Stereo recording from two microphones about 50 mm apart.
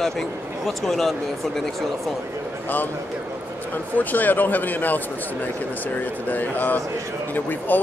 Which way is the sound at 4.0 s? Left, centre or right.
Left.